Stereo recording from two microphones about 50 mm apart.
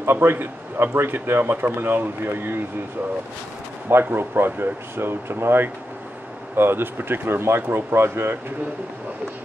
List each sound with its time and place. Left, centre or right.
0.0 s a man's voice: right
3.9 s speech: right